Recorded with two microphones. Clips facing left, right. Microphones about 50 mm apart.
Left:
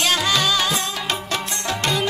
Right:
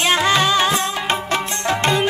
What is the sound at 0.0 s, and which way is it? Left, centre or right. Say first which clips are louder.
Music: right 4 dB; right.